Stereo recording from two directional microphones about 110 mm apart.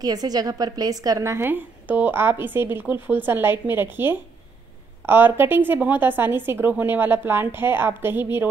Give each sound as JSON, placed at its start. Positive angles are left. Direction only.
{"t": 0.0, "sound": "a woman's voice", "side_deg": -35}